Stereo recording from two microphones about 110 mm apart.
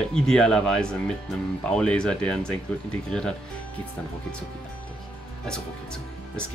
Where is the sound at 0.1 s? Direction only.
5° left (ahead or behind).